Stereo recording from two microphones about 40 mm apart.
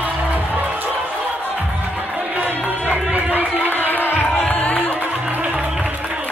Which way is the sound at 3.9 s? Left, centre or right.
Left.